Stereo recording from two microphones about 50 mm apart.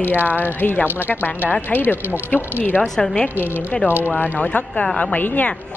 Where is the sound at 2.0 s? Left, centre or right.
Right.